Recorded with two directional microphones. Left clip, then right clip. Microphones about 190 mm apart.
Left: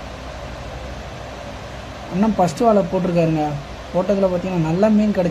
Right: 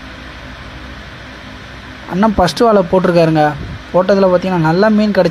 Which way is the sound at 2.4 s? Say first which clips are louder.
Right 4 dB; 30° right (ahead or behind).